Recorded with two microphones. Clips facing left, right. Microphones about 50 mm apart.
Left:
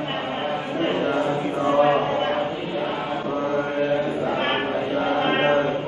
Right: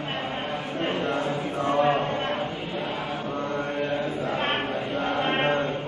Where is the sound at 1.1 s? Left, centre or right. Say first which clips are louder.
Left 4 dB; centre.